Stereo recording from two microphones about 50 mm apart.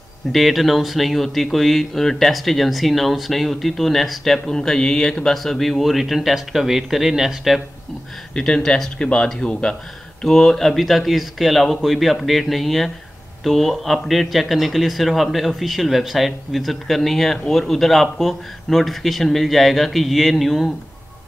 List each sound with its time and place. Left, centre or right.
0.3 s speech: centre
4.6 s speech: centre
8.4 s speech: centre